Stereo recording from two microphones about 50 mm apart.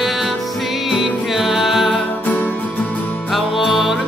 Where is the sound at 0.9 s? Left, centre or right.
Centre.